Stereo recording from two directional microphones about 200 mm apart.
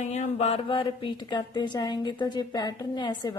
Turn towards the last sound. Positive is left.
turn(degrees=20)  # may be behind; listen again after turning